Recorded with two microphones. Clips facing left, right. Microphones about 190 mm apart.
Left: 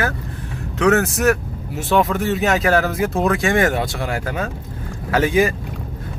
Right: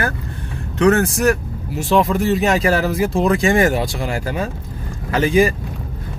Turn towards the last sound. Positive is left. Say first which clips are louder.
# right 1 dB
turn(degrees=0)  # may be behind; listen again after turning